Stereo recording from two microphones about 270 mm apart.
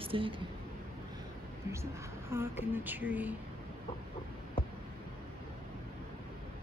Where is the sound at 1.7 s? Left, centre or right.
Centre.